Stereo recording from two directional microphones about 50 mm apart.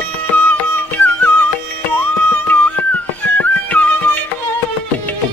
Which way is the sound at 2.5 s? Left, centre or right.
Left.